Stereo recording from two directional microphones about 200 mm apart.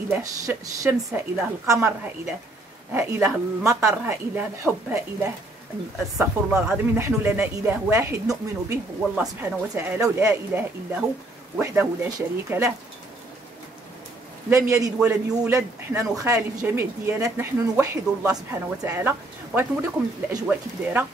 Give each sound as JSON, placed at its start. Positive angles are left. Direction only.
{"t": 0.1, "sound": "a man's voice", "side_deg": -10}
{"t": 14.5, "sound": "a man's voice", "side_deg": -15}